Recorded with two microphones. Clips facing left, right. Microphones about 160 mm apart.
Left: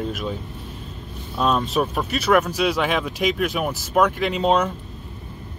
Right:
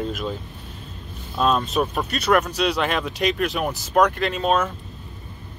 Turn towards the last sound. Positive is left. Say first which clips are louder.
# left 2 dB
turn(degrees=20)  # may be behind; listen again after turning